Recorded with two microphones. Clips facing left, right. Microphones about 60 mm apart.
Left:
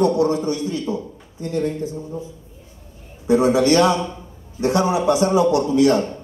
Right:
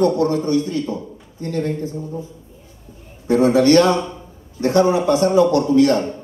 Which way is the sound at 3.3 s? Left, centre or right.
Centre.